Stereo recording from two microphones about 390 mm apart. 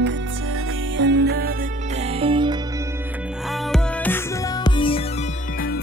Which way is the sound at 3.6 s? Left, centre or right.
Centre.